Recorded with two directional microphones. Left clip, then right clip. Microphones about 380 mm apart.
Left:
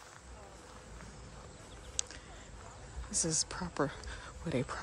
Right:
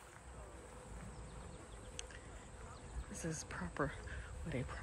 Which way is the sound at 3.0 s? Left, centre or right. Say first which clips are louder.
Left 11 dB; centre.